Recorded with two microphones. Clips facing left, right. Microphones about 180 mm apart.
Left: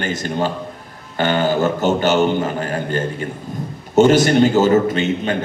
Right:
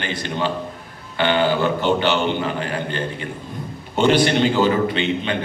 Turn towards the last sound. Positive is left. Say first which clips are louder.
# left 3 dB
turn(degrees=45)  # may be behind; listen again after turning